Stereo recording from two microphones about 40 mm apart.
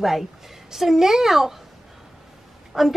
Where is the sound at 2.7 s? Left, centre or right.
Centre.